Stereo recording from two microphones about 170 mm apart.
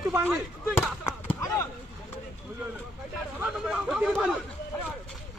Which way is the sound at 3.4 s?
5° right (ahead or behind).